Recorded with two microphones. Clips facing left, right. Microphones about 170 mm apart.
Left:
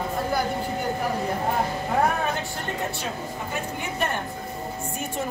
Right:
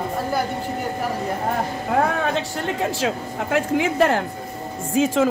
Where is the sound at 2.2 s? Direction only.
90° right.